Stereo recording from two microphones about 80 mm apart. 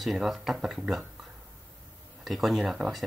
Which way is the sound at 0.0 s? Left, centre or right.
Centre.